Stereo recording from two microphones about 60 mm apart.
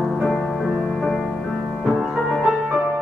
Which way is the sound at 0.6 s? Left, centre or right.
Centre.